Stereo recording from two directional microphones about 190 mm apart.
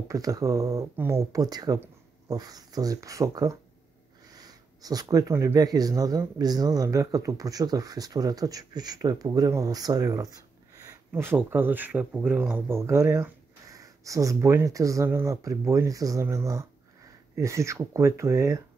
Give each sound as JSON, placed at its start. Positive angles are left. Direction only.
{"t": 0.1, "sound": "speech", "side_deg": -20}